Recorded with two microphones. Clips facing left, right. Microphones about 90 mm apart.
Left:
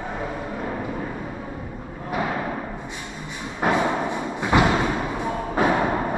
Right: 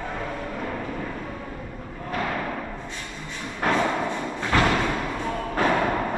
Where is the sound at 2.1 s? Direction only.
15° left (ahead or behind).